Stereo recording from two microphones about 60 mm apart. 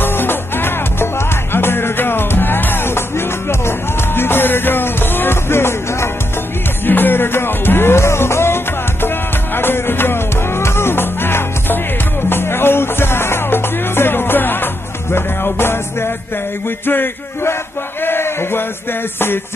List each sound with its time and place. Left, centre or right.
0.0 s music: left
9.6 s music: left
16.6 s a sound: left
19.1 s music: left